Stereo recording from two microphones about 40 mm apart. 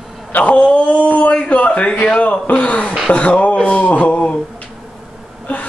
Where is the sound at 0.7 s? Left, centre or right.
Left.